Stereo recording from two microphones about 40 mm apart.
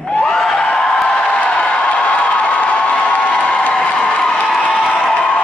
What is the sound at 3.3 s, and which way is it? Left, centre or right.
Crowd, left.